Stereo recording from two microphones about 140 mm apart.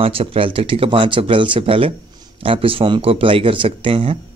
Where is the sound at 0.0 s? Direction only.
45° right (ahead or behind).